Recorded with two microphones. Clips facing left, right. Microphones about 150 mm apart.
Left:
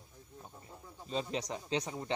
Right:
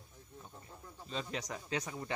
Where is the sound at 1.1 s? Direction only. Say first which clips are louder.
Left 4 dB; 35° left (ahead or behind).